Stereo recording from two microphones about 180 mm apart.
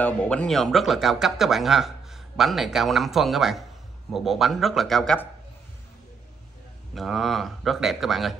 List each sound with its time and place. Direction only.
0.0 s speech: 5° left (ahead or behind)
6.9 s speech: centre (ahead or behind)